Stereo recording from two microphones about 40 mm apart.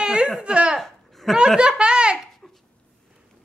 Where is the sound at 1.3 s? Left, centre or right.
Right.